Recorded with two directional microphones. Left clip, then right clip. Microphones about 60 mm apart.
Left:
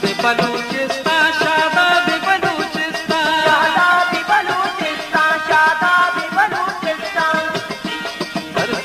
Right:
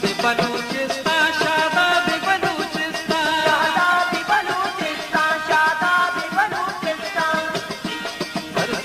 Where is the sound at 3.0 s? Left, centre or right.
Left.